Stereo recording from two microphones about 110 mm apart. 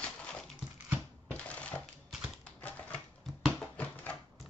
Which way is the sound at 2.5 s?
15° left (ahead or behind).